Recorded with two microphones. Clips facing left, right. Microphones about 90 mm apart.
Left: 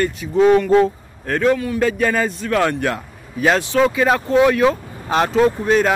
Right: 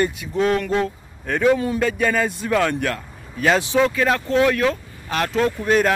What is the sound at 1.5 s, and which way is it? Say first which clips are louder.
Speech: even; 25° right (ahead or behind).